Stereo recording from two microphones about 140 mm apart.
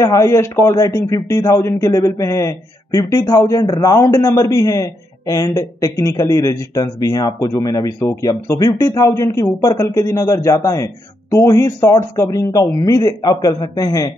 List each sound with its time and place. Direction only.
0.0 s a man's voice: 20° left (ahead or behind)